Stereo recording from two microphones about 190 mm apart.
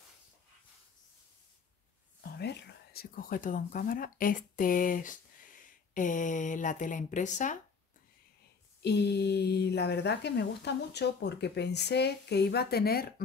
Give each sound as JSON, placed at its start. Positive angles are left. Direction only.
{"t": 2.2, "sound": "speech", "side_deg": 60}
{"t": 8.8, "sound": "speech", "side_deg": 60}